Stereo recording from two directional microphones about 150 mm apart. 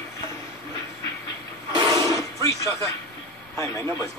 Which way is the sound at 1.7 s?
30° right (ahead or behind).